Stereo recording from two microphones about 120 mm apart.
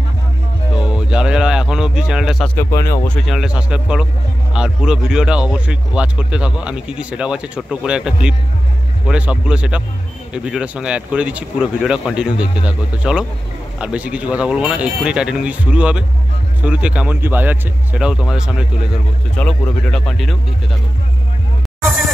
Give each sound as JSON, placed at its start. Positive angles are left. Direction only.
{"t": 0.8, "sound": "speech", "side_deg": -5}
{"t": 2.4, "sound": "speech", "side_deg": 20}
{"t": 3.1, "sound": "speech", "side_deg": 0}
{"t": 17.9, "sound": "speech", "side_deg": -5}
{"t": 19.4, "sound": "speech", "side_deg": 10}